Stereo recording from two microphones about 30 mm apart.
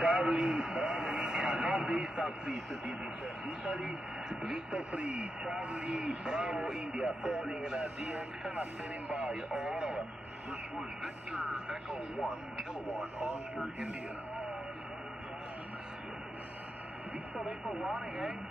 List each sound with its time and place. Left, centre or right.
0.0 s vehicle: right
3.4 s speech: right
4.7 s speech: right
9.1 s speech: right
9.5 s speech: right
11.7 s speech: right